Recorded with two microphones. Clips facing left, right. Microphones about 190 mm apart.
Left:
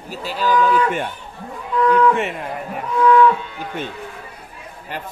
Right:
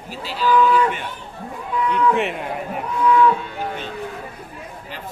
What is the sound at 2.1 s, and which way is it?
Speech, centre (ahead or behind).